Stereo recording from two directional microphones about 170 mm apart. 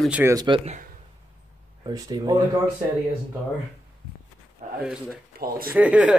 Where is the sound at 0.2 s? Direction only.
20° right (ahead or behind).